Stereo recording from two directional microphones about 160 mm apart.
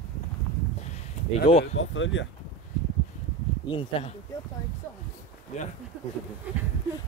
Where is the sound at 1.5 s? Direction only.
35° left (ahead or behind).